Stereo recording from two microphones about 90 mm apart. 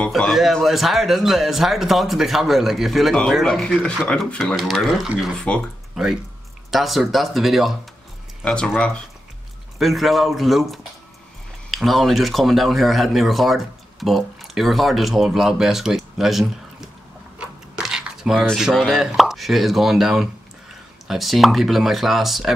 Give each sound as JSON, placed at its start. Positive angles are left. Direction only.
{"t": 0.1, "sound": "a man's voice", "side_deg": 0}
{"t": 6.7, "sound": "a man's voice", "side_deg": 0}
{"t": 8.5, "sound": "speech", "side_deg": 10}
{"t": 9.8, "sound": "a man's voice", "side_deg": 0}
{"t": 17.7, "sound": "a sound", "side_deg": -10}
{"t": 18.6, "sound": "a man's voice", "side_deg": 0}